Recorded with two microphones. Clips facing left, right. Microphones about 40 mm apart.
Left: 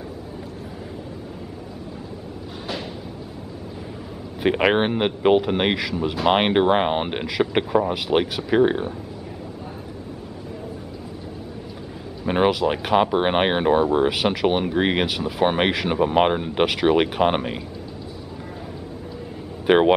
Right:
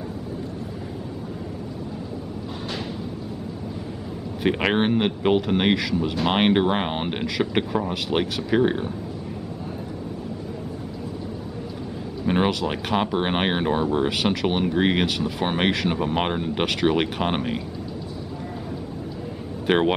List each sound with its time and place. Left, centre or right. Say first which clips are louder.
4.4 s speech: left 3 dB; centre
12.3 s speech: left 3 dB; centre
19.6 s speech: left 4 dB; centre